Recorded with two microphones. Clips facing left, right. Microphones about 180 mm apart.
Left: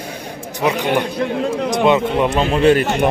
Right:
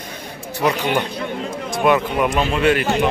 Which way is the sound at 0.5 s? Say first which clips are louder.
Left 2 dB; 15° left (ahead or behind).